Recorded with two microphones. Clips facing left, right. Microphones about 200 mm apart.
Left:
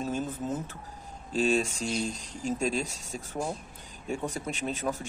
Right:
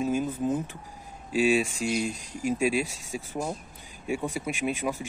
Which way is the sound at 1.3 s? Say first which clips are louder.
Right 3 dB; 10° right (ahead or behind).